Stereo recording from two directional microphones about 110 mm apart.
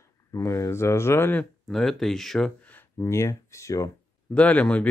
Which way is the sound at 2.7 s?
25° left (ahead or behind).